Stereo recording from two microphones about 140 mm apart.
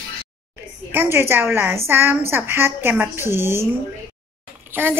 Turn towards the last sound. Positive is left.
turn(degrees=-15)  # may be behind; listen again after turning